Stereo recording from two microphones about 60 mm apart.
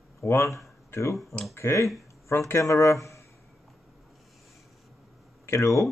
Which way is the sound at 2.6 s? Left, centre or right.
Left.